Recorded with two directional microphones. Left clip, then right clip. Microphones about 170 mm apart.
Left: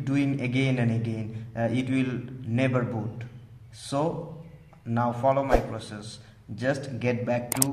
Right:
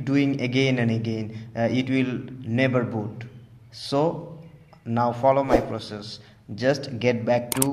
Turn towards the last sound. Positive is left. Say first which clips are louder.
# right 5 dB
turn(degrees=-30)  # may be behind; listen again after turning